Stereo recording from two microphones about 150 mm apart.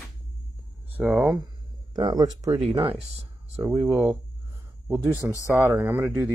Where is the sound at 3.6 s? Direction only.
15° right (ahead or behind).